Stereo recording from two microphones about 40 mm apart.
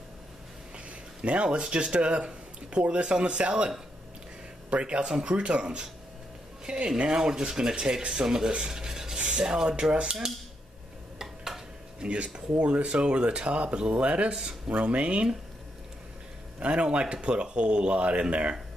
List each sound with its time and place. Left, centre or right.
1.2 s speech: right
11.1 s a sound: centre
12.0 s speech: right
16.5 s speech: right